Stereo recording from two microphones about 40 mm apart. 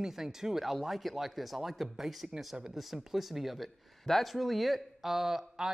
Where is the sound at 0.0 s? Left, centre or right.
Centre.